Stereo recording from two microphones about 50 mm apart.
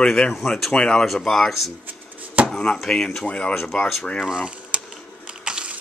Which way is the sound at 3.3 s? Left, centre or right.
Left.